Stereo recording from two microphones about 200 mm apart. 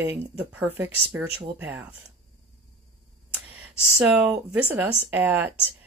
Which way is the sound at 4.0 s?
5° right (ahead or behind).